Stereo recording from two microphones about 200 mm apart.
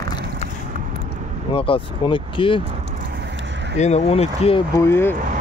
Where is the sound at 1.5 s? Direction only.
25° left (ahead or behind).